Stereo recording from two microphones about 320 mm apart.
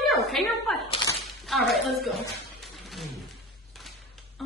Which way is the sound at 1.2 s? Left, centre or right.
Centre.